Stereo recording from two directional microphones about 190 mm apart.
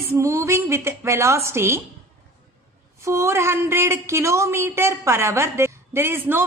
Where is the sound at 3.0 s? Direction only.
15° right (ahead or behind).